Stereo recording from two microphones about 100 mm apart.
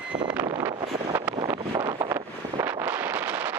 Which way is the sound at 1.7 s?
45° right (ahead or behind).